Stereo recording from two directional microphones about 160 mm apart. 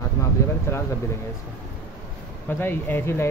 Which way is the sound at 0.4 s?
20° left (ahead or behind).